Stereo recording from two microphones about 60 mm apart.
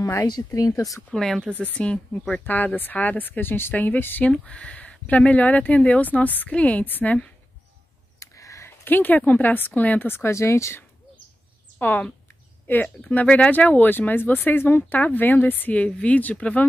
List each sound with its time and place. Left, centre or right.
0.4 s speech: left
1.1 s speech: centre
1.6 s speech: left
4.5 s speech: centre
8.2 s a sound: left
8.6 s speech: left
10.3 s speech: left
11.8 s speech: left